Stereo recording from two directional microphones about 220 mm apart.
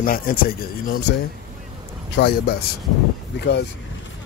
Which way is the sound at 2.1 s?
45° left (ahead or behind).